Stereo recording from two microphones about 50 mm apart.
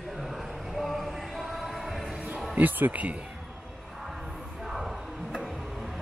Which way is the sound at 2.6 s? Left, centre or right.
Right.